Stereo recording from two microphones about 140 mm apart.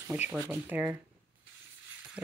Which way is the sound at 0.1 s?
10° right (ahead or behind).